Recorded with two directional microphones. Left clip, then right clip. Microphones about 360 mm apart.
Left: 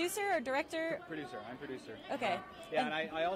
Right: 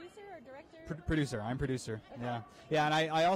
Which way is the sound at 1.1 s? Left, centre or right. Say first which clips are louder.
Right 9 dB; right.